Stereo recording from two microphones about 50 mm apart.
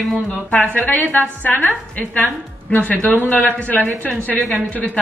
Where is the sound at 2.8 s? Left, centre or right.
Left.